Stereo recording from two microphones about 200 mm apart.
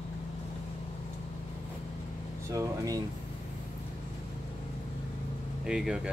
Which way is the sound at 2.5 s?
15° right (ahead or behind).